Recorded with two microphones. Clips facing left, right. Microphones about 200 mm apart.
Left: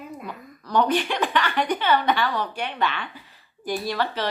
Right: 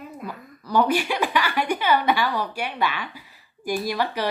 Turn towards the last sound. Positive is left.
turn(degrees=-10)  # may be behind; listen again after turning